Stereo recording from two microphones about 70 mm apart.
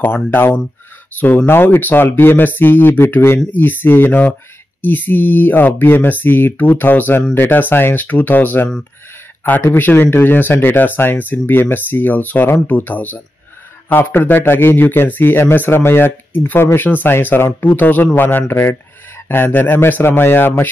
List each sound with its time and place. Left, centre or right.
0.0 s speech: left
9.8 s speech: left